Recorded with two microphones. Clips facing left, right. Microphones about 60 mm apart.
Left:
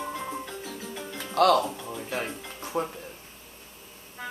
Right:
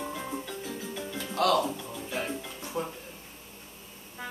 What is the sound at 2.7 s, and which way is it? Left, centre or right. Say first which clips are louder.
Speech: left 4 dB; left.